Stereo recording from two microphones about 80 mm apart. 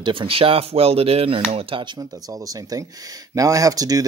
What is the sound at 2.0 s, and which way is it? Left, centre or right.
Speech, right.